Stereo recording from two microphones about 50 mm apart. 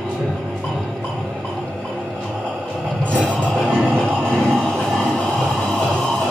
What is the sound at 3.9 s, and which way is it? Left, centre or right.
Music, centre.